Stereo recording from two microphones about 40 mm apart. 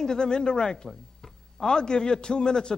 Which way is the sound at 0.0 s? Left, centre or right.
Centre.